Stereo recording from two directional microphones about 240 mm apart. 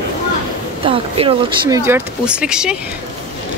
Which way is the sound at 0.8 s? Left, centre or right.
Right.